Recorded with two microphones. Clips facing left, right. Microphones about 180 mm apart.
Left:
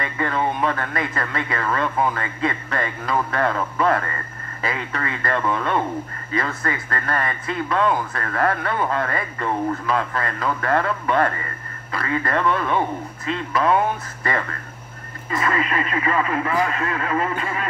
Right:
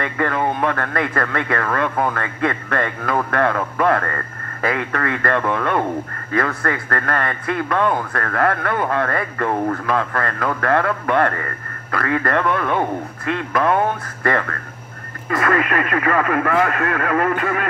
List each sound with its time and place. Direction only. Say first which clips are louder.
0.0 s speech: right 3 dB; 55° right (ahead or behind)